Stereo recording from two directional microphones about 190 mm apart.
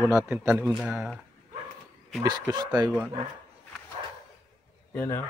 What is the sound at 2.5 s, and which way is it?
Speech, 20° right (ahead or behind).